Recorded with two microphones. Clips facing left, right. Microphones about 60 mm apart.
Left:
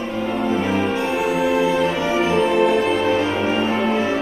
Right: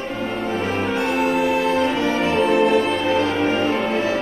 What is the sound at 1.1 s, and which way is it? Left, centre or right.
Music, right.